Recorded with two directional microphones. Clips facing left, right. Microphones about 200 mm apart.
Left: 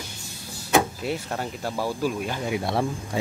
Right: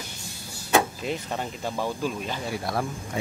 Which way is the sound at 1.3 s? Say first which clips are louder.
Left 1 dB; 10° left (ahead or behind).